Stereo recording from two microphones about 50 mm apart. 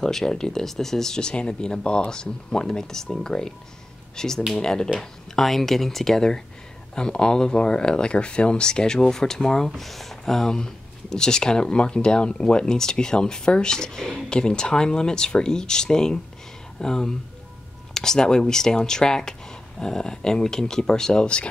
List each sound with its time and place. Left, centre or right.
0.0 s speech: centre